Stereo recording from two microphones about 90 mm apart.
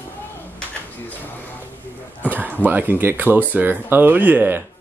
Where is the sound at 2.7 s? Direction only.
20° right (ahead or behind).